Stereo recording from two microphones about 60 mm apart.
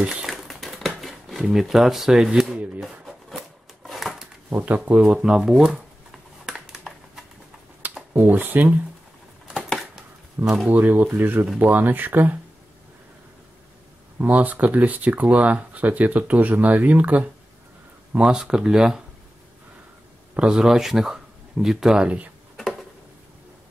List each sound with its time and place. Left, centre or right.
0.0 s speech: centre
0.3 s a sound: centre
3.8 s a sound: centre
4.5 s speech: right
5.0 s speech: centre
6.4 s computer keyboard: centre
8.1 s speech: right
9.5 s typewriter: centre
10.7 s speech: right
14.3 s speech: right
18.1 s speech: centre
20.3 s speech: centre